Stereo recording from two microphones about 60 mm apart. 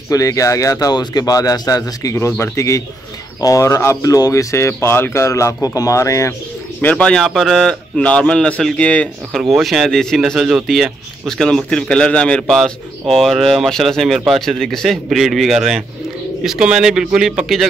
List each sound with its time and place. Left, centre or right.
0.1 s speech: left
2.2 s a man's voice: left
3.3 s speech: left
5.2 s speech: left
6.8 s speech: left
7.2 s speech: centre
8.0 s a man's voice: centre
9.5 s a man's voice: centre
12.4 s speech: centre